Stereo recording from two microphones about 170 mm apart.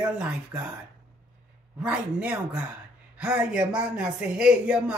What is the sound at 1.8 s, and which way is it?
Speech, 5° right (ahead or behind).